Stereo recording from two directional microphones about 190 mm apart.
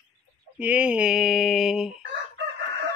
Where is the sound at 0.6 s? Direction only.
5° right (ahead or behind).